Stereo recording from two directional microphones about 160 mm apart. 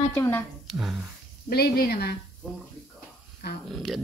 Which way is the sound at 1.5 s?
75° left (ahead or behind).